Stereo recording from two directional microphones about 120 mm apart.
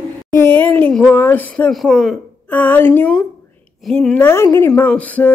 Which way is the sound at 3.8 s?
5° left (ahead or behind).